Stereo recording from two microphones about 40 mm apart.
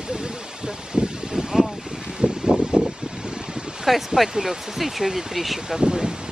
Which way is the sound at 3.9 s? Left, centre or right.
Centre.